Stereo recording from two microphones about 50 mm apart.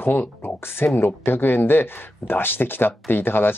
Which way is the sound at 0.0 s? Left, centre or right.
Left.